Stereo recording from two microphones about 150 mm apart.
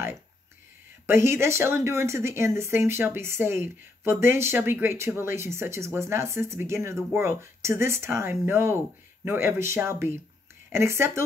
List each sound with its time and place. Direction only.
1.0 s speech: 15° right (ahead or behind)